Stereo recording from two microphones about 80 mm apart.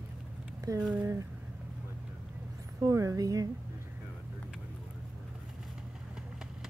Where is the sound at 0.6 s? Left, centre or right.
Right.